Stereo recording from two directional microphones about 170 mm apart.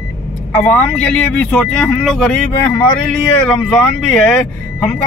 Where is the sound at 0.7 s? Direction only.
5° left (ahead or behind).